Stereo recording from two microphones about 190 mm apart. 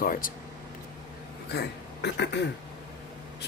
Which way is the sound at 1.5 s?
60° left (ahead or behind).